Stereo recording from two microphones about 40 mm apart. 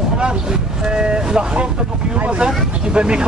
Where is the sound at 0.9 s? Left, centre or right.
Right.